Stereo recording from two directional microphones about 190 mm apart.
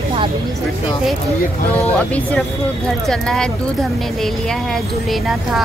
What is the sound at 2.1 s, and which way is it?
A woman's voice, 5° left (ahead or behind).